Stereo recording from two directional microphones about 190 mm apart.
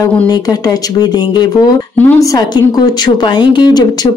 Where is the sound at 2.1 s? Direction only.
15° left (ahead or behind).